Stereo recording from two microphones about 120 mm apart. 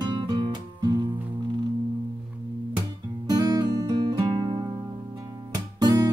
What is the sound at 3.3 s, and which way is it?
Music, 35° right (ahead or behind).